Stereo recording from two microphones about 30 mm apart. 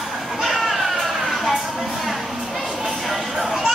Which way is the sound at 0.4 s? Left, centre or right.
Centre.